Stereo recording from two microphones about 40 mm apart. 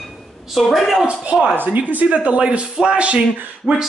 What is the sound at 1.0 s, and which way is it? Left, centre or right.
Speech, right.